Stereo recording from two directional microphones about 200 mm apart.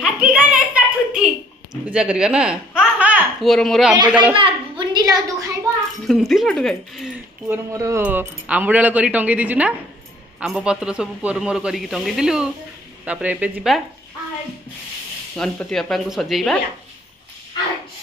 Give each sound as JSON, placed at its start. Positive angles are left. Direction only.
{"t": 0.0, "sound": "a sound", "side_deg": -5}
{"t": 1.9, "sound": "speech", "side_deg": -5}
{"t": 4.4, "sound": "a sound", "side_deg": -20}
{"t": 6.0, "sound": "a man's voice", "side_deg": 0}
{"t": 7.4, "sound": "a man's voice", "side_deg": -15}
{"t": 15.3, "sound": "a man's voice", "side_deg": 0}